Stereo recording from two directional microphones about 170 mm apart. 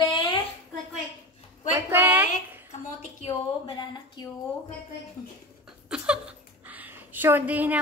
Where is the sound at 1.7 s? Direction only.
10° right (ahead or behind).